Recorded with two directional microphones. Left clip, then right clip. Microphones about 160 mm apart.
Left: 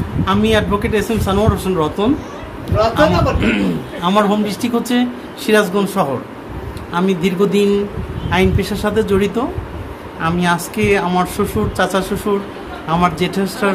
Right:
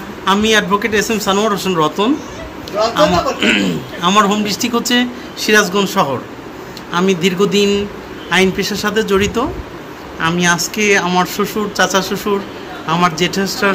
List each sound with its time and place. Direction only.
0.2 s a man's voice: 10° left (ahead or behind)